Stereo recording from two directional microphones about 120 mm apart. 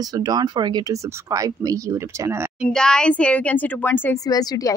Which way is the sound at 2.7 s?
5° left (ahead or behind).